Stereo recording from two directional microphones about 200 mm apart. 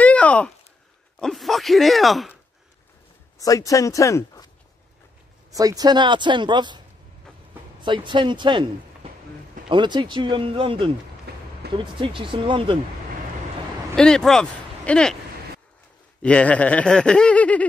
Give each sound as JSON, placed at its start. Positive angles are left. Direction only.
{"t": 0.0, "sound": "a sound", "side_deg": 5}
{"t": 1.2, "sound": "speech", "side_deg": 0}
{"t": 3.3, "sound": "speech", "side_deg": 15}
{"t": 5.5, "sound": "speech", "side_deg": -15}
{"t": 7.8, "sound": "speech", "side_deg": -25}
{"t": 11.3, "sound": "a sound", "side_deg": -55}
{"t": 11.7, "sound": "speech", "side_deg": -25}
{"t": 13.9, "sound": "speech", "side_deg": 5}
{"t": 16.2, "sound": "speech", "side_deg": 5}